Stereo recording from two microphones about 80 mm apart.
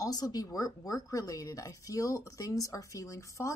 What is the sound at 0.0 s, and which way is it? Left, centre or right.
A woman's voice, left.